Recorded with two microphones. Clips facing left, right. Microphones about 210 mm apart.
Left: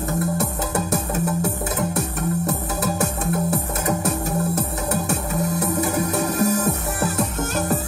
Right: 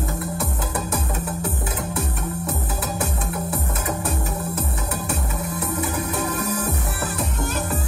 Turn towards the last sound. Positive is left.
turn(degrees=45)  # may be behind; listen again after turning